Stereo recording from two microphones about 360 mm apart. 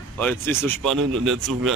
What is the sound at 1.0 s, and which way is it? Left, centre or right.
Speech, right.